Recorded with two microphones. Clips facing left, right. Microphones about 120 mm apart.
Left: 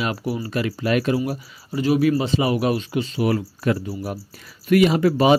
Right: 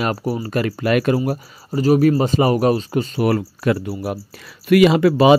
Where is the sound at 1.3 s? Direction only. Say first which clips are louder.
Right 4 dB; 40° right (ahead or behind).